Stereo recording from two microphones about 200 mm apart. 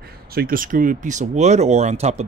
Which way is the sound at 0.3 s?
50° right (ahead or behind).